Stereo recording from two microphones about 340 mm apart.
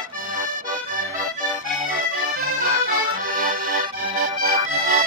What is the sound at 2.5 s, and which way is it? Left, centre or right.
Accordion, right.